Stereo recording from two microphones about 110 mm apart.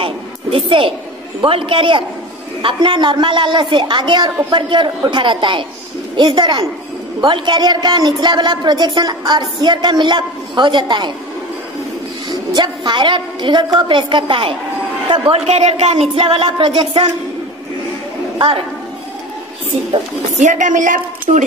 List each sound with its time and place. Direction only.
0.0 s a sound: 55° right (ahead or behind)
1.4 s a woman's voice: 50° right (ahead or behind)
12.3 s a woman's voice: 40° right (ahead or behind)
15.4 s speech: 80° right; by 17.1 s 50° right (ahead or behind)
20.3 s a woman's voice: 90° right
21.3 s speech: 75° right (ahead or behind)